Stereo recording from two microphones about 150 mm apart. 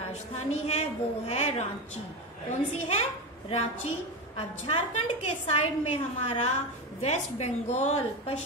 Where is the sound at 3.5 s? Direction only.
45° left (ahead or behind).